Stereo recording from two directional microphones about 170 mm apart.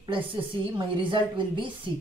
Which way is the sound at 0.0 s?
30° right (ahead or behind).